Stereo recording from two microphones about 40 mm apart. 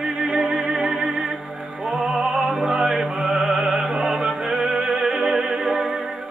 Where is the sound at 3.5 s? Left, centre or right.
Centre.